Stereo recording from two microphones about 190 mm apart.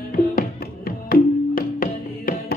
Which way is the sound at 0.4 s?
45° left (ahead or behind).